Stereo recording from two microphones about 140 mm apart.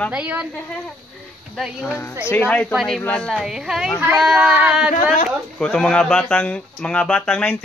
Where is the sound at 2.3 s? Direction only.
10° left (ahead or behind).